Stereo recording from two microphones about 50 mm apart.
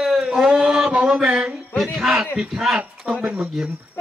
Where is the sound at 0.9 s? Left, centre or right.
Right.